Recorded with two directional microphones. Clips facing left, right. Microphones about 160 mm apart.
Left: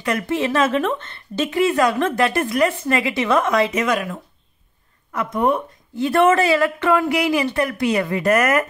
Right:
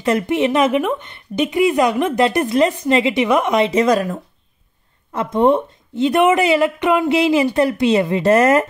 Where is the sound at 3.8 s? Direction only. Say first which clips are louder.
Right 5 dB; 35° right (ahead or behind).